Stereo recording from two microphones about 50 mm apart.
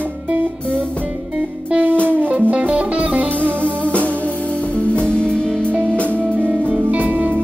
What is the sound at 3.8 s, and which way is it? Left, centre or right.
Music, left.